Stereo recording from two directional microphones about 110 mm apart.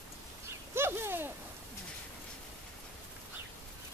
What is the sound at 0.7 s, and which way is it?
Bird, 20° right (ahead or behind).